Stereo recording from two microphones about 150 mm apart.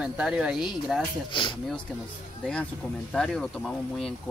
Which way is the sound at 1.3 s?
35° left (ahead or behind).